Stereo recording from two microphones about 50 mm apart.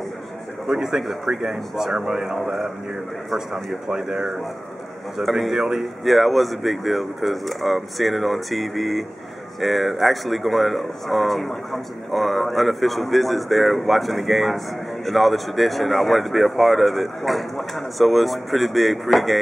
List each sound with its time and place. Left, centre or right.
0.7 s speech: centre